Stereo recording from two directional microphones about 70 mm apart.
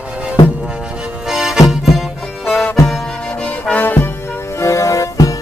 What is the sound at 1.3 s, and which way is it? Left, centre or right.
Music, centre.